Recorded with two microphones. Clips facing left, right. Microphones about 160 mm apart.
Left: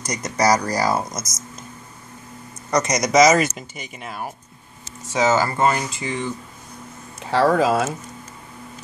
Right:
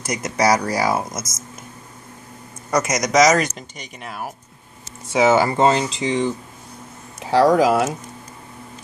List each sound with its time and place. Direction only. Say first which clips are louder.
0.0 s speech: right 1 dB; 5° right (ahead or behind)
2.7 s speech: even; 5° right (ahead or behind)
5.0 s speech: right 3 dB; 10° right (ahead or behind)
7.5 s speech: right 2 dB; 20° right (ahead or behind)